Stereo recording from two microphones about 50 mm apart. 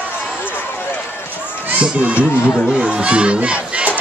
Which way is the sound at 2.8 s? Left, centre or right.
Centre.